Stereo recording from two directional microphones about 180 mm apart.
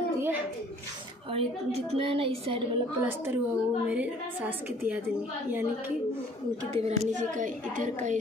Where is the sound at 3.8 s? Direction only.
5° right (ahead or behind).